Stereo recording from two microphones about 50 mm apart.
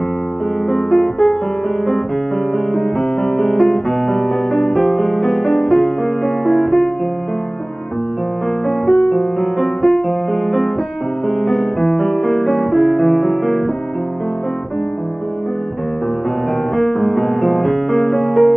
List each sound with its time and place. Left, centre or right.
0.7 s music: centre
2.7 s music: centre
8.6 s music: centre
16.7 s music: centre